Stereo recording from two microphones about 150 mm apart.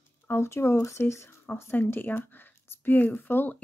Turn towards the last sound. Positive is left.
turn(degrees=15)  # may be behind; listen again after turning